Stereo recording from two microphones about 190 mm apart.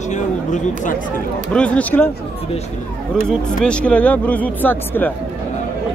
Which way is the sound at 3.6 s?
5° left (ahead or behind).